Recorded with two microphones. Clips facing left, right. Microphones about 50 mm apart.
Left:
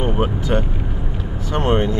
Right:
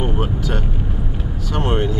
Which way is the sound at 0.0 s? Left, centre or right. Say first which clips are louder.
Left 2 dB; centre.